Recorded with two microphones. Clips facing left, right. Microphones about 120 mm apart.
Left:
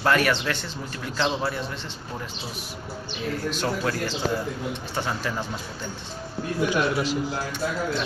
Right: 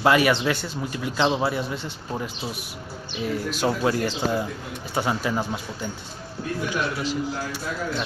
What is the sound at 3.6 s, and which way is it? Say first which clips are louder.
Speech: right 4 dB; 20° right (ahead or behind).